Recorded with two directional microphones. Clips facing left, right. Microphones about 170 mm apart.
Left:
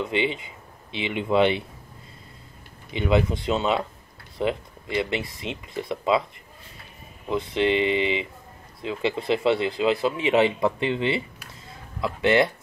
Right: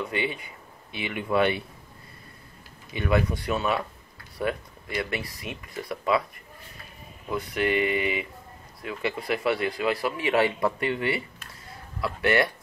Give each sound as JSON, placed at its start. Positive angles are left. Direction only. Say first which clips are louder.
{"t": 0.0, "sound": "speech", "louder": "left 4 dB", "side_deg": 20}
{"t": 2.9, "sound": "speech", "louder": "left 3 dB", "side_deg": 20}
{"t": 7.2, "sound": "speech", "louder": "left 4 dB", "side_deg": 25}